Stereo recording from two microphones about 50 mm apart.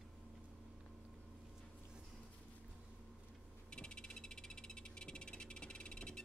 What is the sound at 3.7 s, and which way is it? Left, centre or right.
Frog, centre.